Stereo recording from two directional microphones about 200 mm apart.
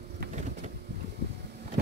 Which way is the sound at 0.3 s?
35° right (ahead or behind).